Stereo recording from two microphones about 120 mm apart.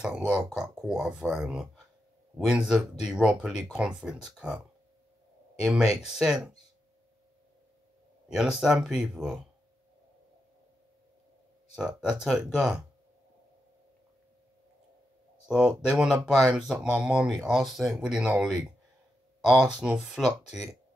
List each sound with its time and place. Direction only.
0.0 s speech: 10° right (ahead or behind)
5.6 s speech: 5° right (ahead or behind)
8.3 s speech: 5° right (ahead or behind)
11.7 s speech: 5° right (ahead or behind)
15.4 s speech: 10° right (ahead or behind)